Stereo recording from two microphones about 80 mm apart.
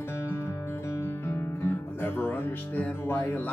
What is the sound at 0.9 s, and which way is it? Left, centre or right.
Guitar, left.